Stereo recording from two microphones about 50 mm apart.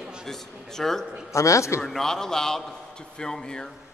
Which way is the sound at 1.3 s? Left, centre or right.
Left.